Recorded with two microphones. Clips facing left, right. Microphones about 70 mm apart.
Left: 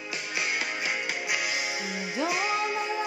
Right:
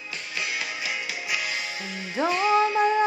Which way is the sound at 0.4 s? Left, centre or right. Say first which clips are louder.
Even; left.